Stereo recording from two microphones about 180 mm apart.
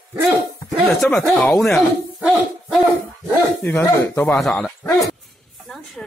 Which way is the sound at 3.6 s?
15° left (ahead or behind).